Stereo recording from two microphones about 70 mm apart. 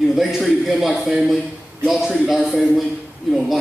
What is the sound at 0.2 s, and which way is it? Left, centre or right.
A man's voice, centre.